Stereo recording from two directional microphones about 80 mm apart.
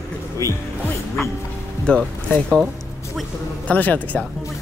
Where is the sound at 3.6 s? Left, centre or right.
Left.